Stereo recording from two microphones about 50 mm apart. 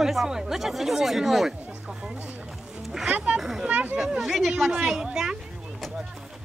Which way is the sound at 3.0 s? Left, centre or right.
Right.